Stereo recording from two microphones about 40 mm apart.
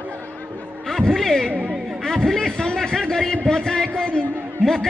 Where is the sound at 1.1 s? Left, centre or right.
Centre.